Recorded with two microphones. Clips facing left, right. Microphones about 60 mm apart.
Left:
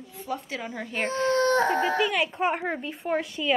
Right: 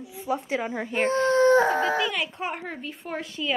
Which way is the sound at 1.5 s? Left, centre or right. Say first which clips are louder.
Right 3 dB; centre.